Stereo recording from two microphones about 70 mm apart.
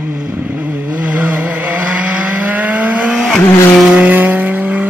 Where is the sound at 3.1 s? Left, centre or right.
Centre.